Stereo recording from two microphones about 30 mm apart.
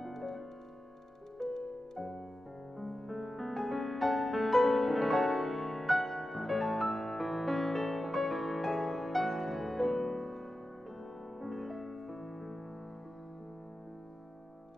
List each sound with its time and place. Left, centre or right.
0.0 s music: centre
1.4 s music: centre
2.0 s music: centre